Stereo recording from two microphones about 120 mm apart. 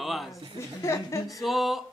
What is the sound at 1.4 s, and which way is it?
Speech, centre (ahead or behind).